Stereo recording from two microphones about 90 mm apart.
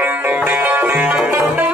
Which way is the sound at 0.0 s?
20° right (ahead or behind).